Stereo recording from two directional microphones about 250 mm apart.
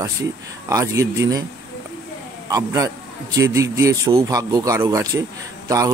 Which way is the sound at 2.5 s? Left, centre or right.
Centre.